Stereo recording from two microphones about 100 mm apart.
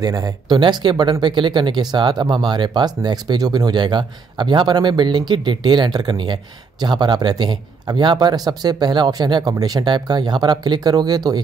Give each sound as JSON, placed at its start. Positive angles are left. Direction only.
{"t": 0.0, "sound": "speech", "side_deg": -40}